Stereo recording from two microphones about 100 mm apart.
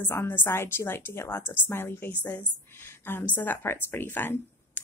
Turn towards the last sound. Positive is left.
turn(degrees=20)  # may be behind; listen again after turning